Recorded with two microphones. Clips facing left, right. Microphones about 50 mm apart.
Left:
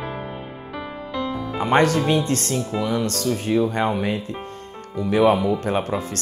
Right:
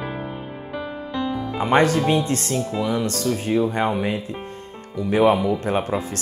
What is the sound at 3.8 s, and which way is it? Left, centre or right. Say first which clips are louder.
Speech: even; right.